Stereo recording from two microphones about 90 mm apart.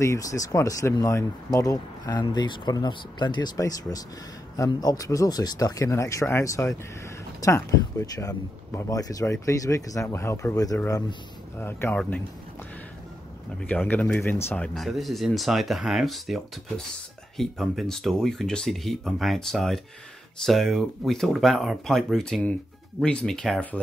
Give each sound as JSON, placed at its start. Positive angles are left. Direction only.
{"t": 0.0, "sound": "speech", "side_deg": 35}
{"t": 11.9, "sound": "speech", "side_deg": 15}
{"t": 13.7, "sound": "speech", "side_deg": 15}
{"t": 14.8, "sound": "speech", "side_deg": 0}